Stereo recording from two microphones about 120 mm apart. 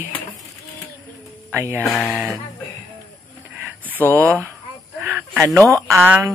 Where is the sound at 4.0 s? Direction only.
15° left (ahead or behind).